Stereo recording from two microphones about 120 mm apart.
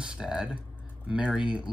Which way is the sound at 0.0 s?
10° right (ahead or behind).